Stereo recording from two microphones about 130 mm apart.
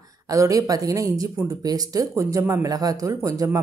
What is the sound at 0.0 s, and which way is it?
Speech, 25° right (ahead or behind).